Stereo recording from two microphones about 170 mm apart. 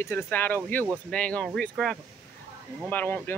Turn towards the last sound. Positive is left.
turn(degrees=10)  # may be behind; listen again after turning